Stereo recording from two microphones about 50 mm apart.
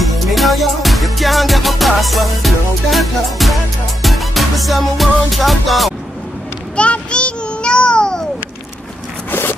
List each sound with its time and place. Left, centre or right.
0.0 s music: centre
6.8 s child singing: left
9.3 s zipper: left